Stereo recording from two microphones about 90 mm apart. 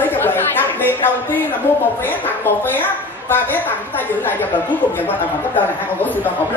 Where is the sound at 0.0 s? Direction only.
25° left (ahead or behind).